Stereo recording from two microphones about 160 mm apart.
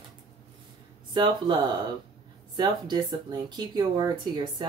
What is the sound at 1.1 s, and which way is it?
Speech, 30° right (ahead or behind).